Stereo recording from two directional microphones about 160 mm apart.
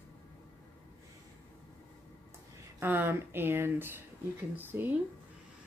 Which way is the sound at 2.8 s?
15° right (ahead or behind).